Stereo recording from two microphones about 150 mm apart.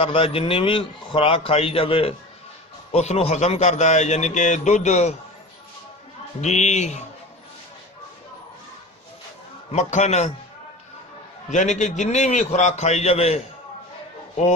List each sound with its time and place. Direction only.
0.0 s a man's voice: 35° left (ahead or behind)
6.4 s a man's voice: 50° left (ahead or behind)
9.7 s a man's voice: 50° left (ahead or behind)
11.5 s a man's voice: 50° left (ahead or behind)